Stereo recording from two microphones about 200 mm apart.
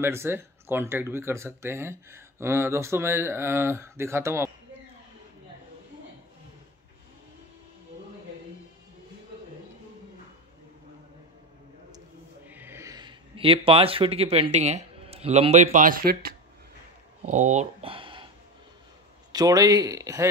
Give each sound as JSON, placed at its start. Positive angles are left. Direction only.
{"t": 0.0, "sound": "speech", "side_deg": -10}
{"t": 12.4, "sound": "speech", "side_deg": -10}
{"t": 17.2, "sound": "speech", "side_deg": -35}
{"t": 19.3, "sound": "speech", "side_deg": -20}